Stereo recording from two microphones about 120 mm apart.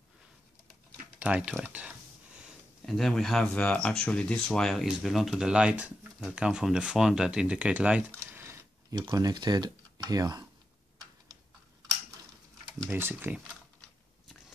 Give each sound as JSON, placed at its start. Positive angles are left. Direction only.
{"t": 1.2, "sound": "speech", "side_deg": -10}
{"t": 2.8, "sound": "speech", "side_deg": 5}
{"t": 8.2, "sound": "a sound", "side_deg": -20}
{"t": 9.0, "sound": "speech", "side_deg": -30}
{"t": 12.9, "sound": "speech", "side_deg": -15}